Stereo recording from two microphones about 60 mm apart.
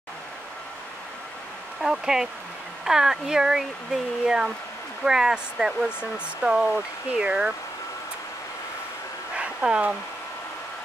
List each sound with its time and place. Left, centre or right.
1.8 s speech: centre
9.4 s speech: centre